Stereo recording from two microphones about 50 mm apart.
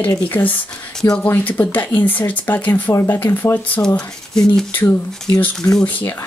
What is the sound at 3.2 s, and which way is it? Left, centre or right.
Speech, left.